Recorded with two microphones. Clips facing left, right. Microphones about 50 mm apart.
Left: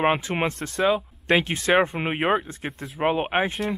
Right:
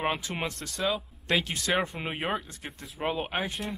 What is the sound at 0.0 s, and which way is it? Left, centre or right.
Speech, left.